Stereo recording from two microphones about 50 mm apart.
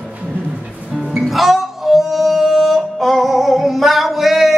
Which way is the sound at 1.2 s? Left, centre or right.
Centre.